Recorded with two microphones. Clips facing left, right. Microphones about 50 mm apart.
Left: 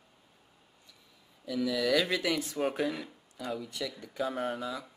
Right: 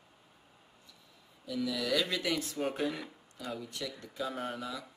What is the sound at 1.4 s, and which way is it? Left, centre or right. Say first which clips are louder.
Speech: left 4 dB; centre.